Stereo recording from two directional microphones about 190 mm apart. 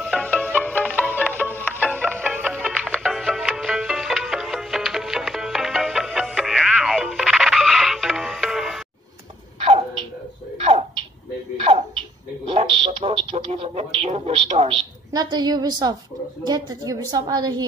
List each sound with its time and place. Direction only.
0.0 s music: 5° left (ahead or behind)
1.1 s music: 10° right (ahead or behind)
10.6 s a sound: 30° right (ahead or behind)
12.4 s music: 30° right (ahead or behind)
15.1 s a woman's voice: 20° right (ahead or behind)